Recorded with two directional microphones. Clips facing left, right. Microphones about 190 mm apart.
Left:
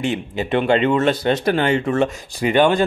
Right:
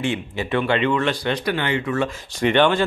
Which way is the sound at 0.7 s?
40° left (ahead or behind).